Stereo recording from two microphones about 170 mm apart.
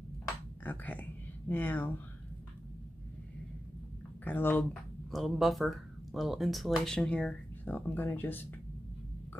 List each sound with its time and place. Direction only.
0.7 s speech: 10° left (ahead or behind)
4.2 s speech: 10° left (ahead or behind)
5.1 s speech: centre (ahead or behind)